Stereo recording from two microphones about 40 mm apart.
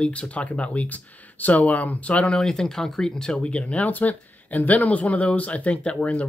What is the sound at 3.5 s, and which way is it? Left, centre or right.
Speech, left.